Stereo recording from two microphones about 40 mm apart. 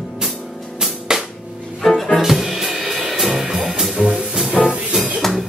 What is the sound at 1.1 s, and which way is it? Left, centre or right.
Music, centre.